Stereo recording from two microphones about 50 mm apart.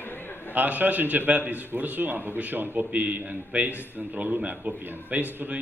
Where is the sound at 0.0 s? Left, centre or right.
Left.